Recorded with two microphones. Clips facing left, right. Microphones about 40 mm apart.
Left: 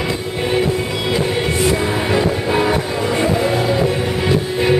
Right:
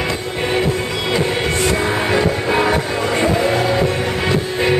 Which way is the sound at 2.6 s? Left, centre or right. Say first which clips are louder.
Even; centre.